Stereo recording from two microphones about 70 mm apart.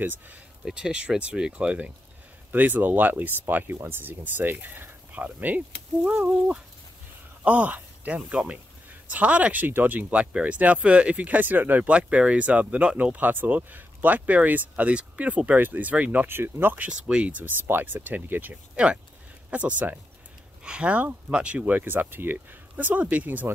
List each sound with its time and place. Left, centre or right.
0.0 s speech: right
0.7 s speech: centre; by 10.0 s right
10.0 s speech: centre